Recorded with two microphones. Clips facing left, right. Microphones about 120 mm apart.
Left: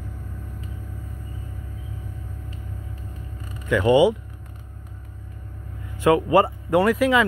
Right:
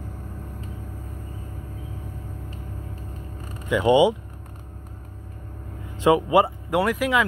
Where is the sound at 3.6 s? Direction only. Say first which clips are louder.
Left 1 dB; 15° right (ahead or behind).